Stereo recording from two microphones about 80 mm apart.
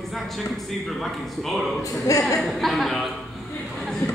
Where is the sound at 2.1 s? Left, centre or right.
Left.